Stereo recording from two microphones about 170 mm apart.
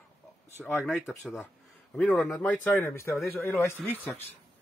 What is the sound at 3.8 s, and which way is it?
Speech, centre (ahead or behind).